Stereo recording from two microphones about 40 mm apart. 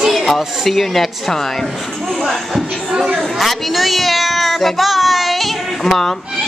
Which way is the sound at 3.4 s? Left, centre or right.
Centre.